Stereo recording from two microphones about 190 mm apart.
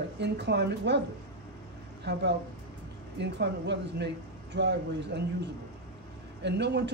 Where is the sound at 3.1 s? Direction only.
65° right (ahead or behind).